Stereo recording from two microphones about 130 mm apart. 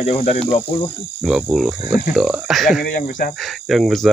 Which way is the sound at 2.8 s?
90° left.